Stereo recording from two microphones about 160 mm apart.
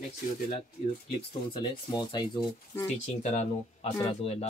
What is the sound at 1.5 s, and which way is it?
Speech, 25° left (ahead or behind).